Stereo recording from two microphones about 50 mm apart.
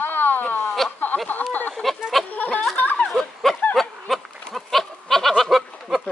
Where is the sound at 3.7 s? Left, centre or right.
Centre.